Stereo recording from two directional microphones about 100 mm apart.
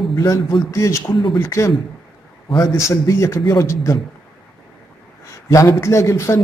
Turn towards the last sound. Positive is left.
turn(degrees=30)  # may be behind; listen again after turning